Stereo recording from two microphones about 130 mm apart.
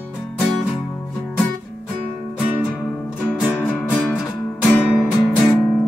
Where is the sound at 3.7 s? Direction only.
10° left (ahead or behind).